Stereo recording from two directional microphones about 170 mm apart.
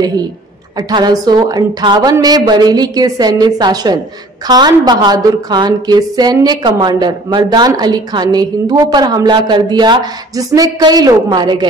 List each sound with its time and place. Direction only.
0.7 s a woman's voice: 25° right (ahead or behind)